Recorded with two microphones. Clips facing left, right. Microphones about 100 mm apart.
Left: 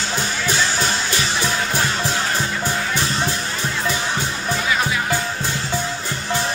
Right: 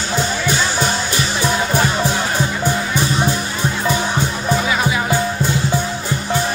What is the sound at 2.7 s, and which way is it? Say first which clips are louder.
Music: right 4 dB; 5° right (ahead or behind).